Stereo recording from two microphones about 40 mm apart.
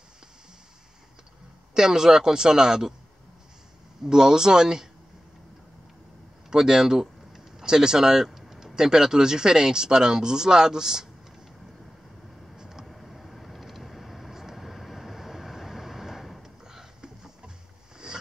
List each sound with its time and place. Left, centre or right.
1.7 s speech: centre
4.0 s speech: centre
6.5 s speech: centre
8.3 s a sound: centre
8.7 s speech: centre
12.5 s vehicle: centre
12.8 s vehicle: centre
16.6 s a sound: centre